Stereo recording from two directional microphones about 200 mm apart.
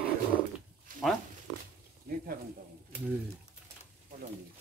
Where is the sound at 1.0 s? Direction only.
Centre (ahead or behind).